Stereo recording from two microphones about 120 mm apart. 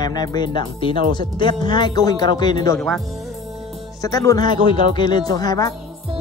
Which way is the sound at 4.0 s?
30° left (ahead or behind).